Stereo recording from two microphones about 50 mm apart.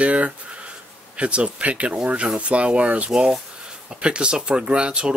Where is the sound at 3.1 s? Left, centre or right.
Centre.